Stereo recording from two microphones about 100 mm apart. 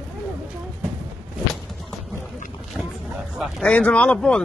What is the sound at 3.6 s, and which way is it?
Speech, 15° left (ahead or behind).